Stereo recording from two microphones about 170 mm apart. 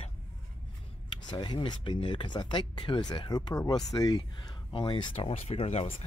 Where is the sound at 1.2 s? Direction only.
25° left (ahead or behind).